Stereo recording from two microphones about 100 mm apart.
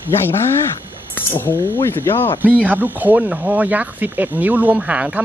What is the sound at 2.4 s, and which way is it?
Speech, 15° right (ahead or behind).